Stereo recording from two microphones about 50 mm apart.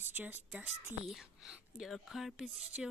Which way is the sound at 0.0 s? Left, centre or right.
Right.